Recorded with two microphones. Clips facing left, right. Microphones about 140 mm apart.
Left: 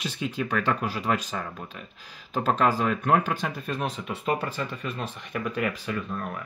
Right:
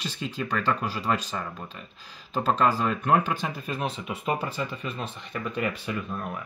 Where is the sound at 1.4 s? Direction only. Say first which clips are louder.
Even; 5° right (ahead or behind).